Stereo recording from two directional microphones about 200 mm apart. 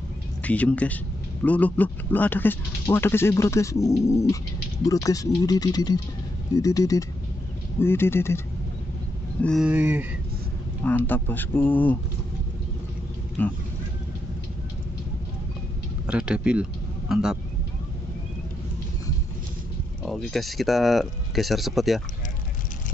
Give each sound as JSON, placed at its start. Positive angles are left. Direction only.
{"t": 0.4, "sound": "speech", "side_deg": 5}
{"t": 9.4, "sound": "speech", "side_deg": 0}
{"t": 11.1, "sound": "speech", "side_deg": 10}
{"t": 13.4, "sound": "speech", "side_deg": 10}
{"t": 16.1, "sound": "speech", "side_deg": -5}
{"t": 20.1, "sound": "speech", "side_deg": 0}